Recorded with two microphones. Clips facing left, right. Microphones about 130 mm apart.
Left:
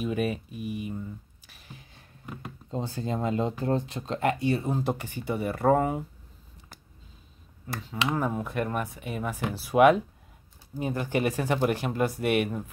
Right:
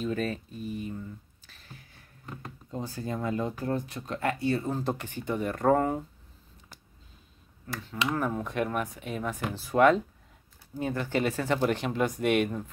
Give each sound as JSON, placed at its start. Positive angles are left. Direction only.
{"t": 0.0, "sound": "speech", "side_deg": 15}
{"t": 1.5, "sound": "a sound", "side_deg": 15}
{"t": 2.7, "sound": "speech", "side_deg": 25}
{"t": 7.7, "sound": "speech", "side_deg": 10}